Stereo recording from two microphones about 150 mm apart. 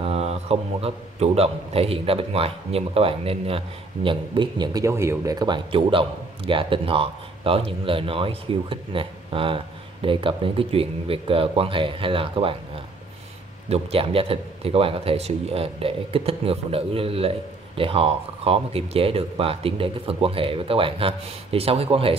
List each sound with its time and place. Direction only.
0.0 s a man's voice: 45° right (ahead or behind)